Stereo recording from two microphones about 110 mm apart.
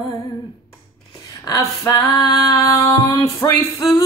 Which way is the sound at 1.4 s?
35° left (ahead or behind).